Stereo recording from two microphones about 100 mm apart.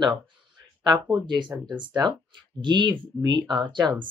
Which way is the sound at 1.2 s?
55° right (ahead or behind).